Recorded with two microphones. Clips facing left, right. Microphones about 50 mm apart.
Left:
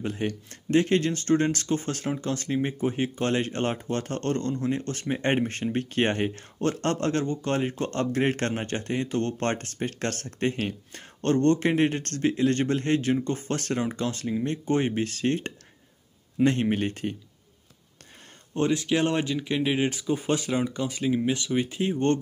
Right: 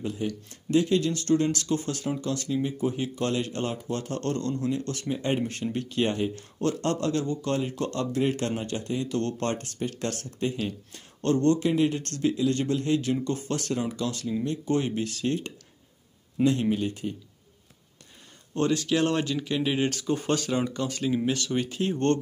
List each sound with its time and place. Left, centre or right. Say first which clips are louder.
0.0 s speech: left 1 dB; left
18.5 s speech: left 1 dB; left